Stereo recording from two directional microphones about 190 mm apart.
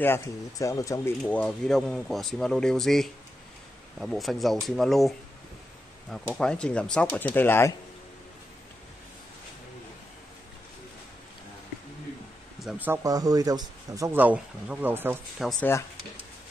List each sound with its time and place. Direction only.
0.0 s speech: 15° left (ahead or behind)
1.2 s speech: 5° left (ahead or behind)
12.5 s speech: 5° right (ahead or behind)
15.4 s speech: 10° left (ahead or behind)